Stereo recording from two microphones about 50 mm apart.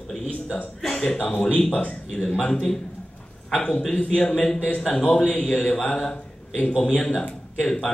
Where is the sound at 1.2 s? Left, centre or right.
Left.